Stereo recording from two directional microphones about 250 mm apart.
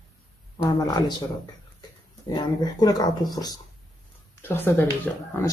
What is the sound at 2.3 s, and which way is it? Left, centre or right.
Speech, centre.